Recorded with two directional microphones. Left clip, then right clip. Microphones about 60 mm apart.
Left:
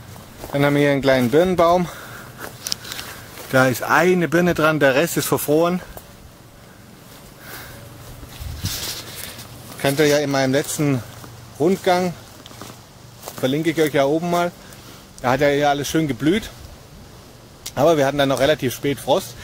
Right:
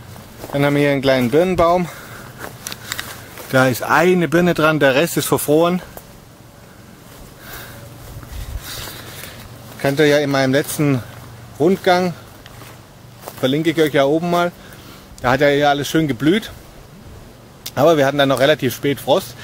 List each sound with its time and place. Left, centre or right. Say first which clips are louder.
0.5 s speech: right 1 dB; left
3.4 s speech: right 2 dB; centre
9.8 s a sound: right 2 dB; centre
10.1 s speech: right 3 dB; right
13.2 s speech: right 3 dB; centre
17.6 s speech: right 3 dB; centre